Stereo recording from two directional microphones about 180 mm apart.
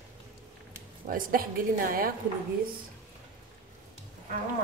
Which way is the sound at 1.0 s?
50° right (ahead or behind).